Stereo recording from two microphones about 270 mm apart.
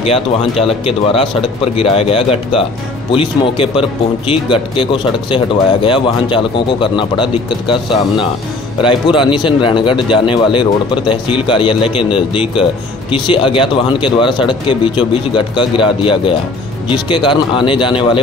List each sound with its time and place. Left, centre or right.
0.0 s speech: left